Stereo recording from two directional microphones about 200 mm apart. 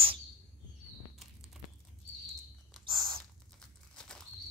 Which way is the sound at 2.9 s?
25° right (ahead or behind).